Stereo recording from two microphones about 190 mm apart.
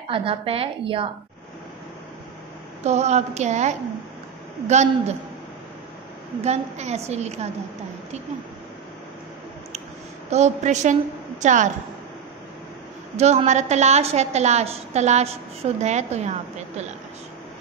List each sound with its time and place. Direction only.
0.1 s a woman's voice: 30° right (ahead or behind)
2.8 s a woman's voice: 35° right (ahead or behind)
6.4 s a woman's voice: 35° right (ahead or behind)
10.3 s a woman's voice: 35° right (ahead or behind)
13.1 s a woman's voice: 35° right (ahead or behind)